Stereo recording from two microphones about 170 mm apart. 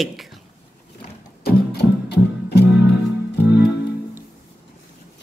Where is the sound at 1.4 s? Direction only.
70° left (ahead or behind).